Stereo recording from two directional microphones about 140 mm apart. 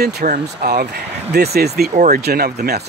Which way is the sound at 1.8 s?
75° right (ahead or behind).